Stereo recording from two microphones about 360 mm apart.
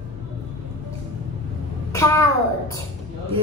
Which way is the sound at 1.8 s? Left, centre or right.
Centre.